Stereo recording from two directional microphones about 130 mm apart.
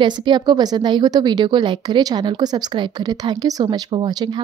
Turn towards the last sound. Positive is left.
turn(degrees=-35)  # may be behind; listen again after turning